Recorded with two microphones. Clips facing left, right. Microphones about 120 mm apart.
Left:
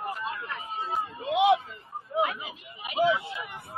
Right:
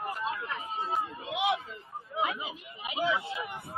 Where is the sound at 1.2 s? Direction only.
30° left (ahead or behind).